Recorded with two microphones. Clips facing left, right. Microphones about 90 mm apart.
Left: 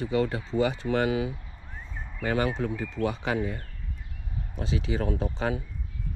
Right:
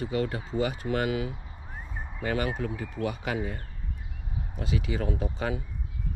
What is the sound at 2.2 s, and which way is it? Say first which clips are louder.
Speech: left 2 dB; 35° left (ahead or behind).